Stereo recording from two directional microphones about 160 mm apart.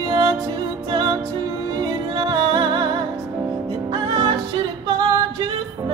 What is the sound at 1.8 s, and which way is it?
Music, 25° right (ahead or behind).